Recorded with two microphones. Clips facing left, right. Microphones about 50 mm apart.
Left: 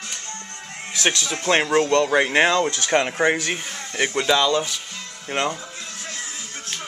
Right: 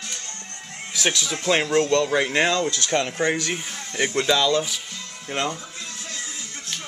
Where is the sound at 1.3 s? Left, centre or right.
Left.